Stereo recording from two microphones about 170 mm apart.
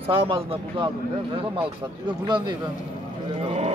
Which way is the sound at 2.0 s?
25° right (ahead or behind).